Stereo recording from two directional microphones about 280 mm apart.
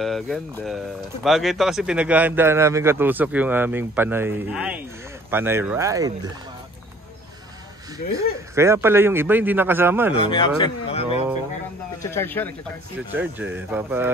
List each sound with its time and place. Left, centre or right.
0.0 s speech: centre
8.5 s speech: centre
10.1 s speech: centre
12.0 s speech: centre
13.1 s speech: centre